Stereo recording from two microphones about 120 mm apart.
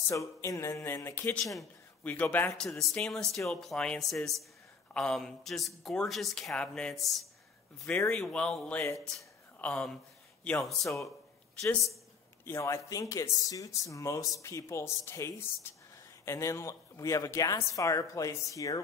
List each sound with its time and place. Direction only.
0.1 s speech: 25° left (ahead or behind)
1.4 s speech: centre (ahead or behind)
2.0 s speech: 10° left (ahead or behind)
10.8 s speech: 25° left (ahead or behind)
12.4 s speech: 20° left (ahead or behind)
15.7 s a sound: 20° left (ahead or behind)
16.3 s speech: 25° left (ahead or behind)